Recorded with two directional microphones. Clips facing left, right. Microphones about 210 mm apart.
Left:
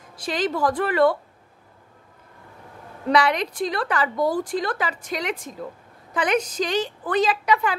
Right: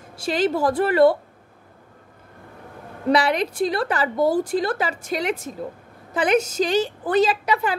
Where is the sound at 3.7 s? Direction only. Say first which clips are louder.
Right 3 dB; 30° right (ahead or behind).